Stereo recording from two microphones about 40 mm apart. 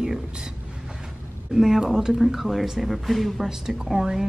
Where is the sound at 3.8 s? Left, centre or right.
Centre.